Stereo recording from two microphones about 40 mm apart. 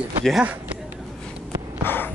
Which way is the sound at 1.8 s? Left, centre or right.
Left.